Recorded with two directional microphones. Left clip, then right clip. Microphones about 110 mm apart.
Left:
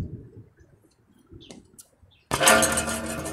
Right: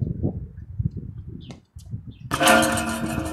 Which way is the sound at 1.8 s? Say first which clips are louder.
Right 5 dB; 45° left (ahead or behind).